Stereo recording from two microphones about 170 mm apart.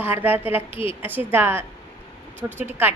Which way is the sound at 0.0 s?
10° right (ahead or behind).